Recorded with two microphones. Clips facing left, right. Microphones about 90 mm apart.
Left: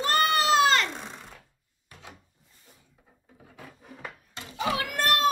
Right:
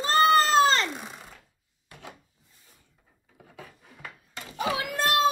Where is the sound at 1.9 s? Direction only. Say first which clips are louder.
Right 3 dB; 60° right (ahead or behind).